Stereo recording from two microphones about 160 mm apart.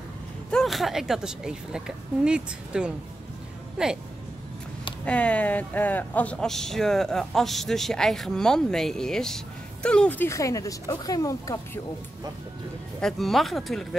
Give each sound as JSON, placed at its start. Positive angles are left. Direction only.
{"t": 0.5, "sound": "a man's voice", "side_deg": 0}
{"t": 5.0, "sound": "a man's voice", "side_deg": 10}
{"t": 13.0, "sound": "a man's voice", "side_deg": 0}